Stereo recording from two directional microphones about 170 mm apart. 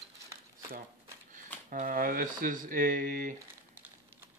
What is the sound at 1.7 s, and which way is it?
Speech, 50° right (ahead or behind).